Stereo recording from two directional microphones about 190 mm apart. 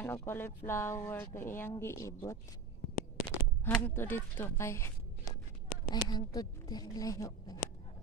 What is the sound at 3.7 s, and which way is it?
Speech, 10° left (ahead or behind).